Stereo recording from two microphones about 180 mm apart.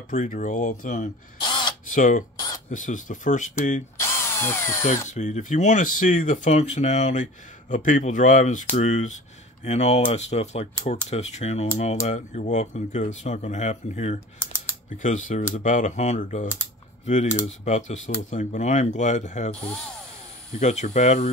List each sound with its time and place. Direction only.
0.1 s speech: 45° left (ahead or behind)
1.4 s a sound: 25° left (ahead or behind)
1.9 s speech: 45° left (ahead or behind)
2.3 s a sound: 20° left (ahead or behind)
2.7 s speech: 45° left (ahead or behind)
4.0 s drill: 15° left (ahead or behind)
5.0 s speech: 40° left (ahead or behind)
19.5 s speech: 5° left (ahead or behind)
20.5 s speech: 40° left (ahead or behind)